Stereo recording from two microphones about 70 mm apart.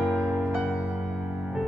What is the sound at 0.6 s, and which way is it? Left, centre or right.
Music, centre.